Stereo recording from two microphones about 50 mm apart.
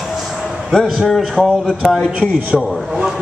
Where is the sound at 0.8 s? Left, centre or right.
Centre.